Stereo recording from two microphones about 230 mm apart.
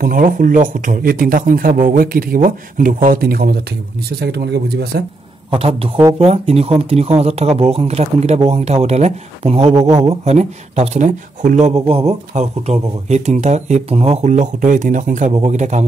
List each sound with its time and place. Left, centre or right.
0.0 s speech: right
5.5 s speech: right